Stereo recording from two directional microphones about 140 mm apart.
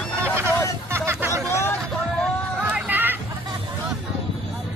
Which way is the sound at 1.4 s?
20° left (ahead or behind).